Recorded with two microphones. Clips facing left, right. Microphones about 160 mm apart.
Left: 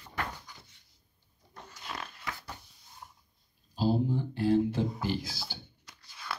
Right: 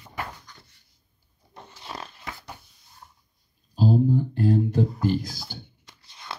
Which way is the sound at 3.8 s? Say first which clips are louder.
Right 7 dB; 45° right (ahead or behind).